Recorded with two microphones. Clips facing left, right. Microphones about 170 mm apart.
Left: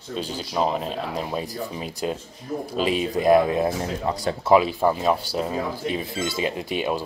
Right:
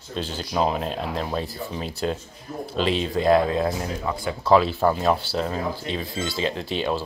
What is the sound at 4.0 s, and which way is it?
Speech, 40° left (ahead or behind).